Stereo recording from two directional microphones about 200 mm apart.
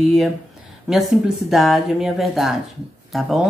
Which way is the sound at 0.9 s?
Centre (ahead or behind).